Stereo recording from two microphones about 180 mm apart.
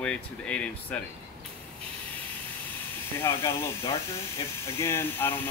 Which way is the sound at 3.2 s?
15° left (ahead or behind).